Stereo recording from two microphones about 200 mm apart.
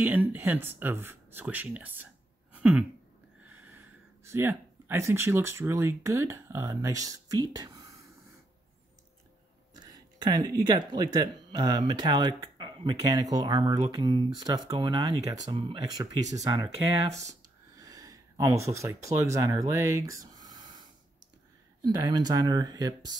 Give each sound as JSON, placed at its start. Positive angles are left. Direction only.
{"t": 0.0, "sound": "speech", "side_deg": -10}
{"t": 2.5, "sound": "throat clearing", "side_deg": -10}
{"t": 3.4, "sound": "speech", "side_deg": -10}
{"t": 9.8, "sound": "a sound", "side_deg": -20}
{"t": 10.9, "sound": "speech", "side_deg": -20}
{"t": 21.8, "sound": "speech", "side_deg": -20}